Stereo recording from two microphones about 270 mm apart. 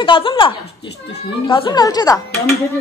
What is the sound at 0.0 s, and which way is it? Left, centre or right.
A woman's voice, centre.